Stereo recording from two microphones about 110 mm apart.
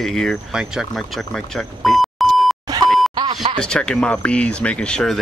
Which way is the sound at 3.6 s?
10° left (ahead or behind).